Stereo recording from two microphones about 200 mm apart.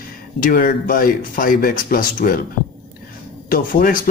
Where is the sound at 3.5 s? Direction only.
45° left (ahead or behind).